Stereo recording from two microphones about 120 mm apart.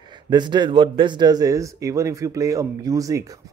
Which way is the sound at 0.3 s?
40° right (ahead or behind).